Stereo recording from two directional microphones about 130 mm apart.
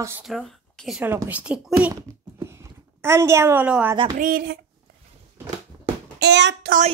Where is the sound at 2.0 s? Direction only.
25° right (ahead or behind).